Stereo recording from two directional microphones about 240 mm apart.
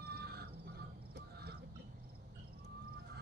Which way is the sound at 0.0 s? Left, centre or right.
Right.